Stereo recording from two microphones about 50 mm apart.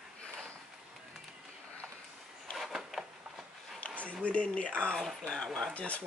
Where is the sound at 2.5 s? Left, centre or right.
Centre.